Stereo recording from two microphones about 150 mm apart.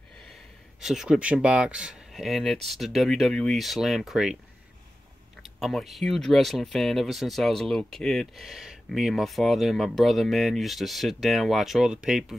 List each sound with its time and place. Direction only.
0.7 s speech: 5° right (ahead or behind)
5.4 s speech: centre (ahead or behind)